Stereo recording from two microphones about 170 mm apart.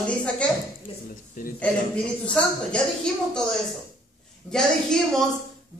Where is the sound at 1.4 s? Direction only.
50° left (ahead or behind).